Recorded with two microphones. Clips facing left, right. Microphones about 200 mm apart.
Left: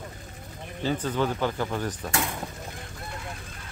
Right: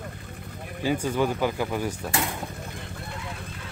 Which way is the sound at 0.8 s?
10° right (ahead or behind).